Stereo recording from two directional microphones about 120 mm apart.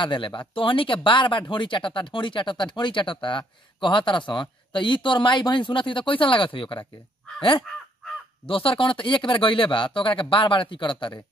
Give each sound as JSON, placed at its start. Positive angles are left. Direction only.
{"t": 0.0, "sound": "speech", "side_deg": 40}
{"t": 8.5, "sound": "speech", "side_deg": 50}